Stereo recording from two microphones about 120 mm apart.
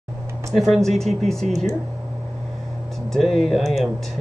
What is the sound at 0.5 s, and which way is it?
Speech, centre (ahead or behind).